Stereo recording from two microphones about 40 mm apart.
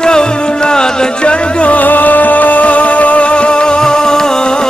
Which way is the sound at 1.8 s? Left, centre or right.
Left.